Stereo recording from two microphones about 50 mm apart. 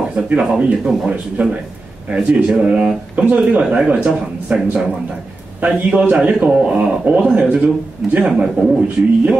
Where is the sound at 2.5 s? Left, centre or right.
Centre.